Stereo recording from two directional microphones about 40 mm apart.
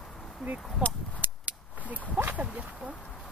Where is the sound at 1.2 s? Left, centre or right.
Right.